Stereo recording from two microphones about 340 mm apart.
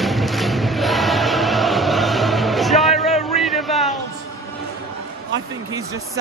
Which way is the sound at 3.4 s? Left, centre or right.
Centre.